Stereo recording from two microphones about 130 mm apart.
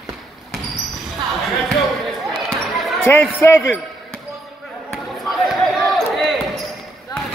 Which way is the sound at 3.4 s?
15° left (ahead or behind).